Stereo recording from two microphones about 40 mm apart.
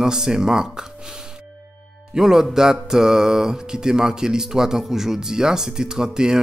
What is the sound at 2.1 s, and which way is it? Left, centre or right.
Speech, centre.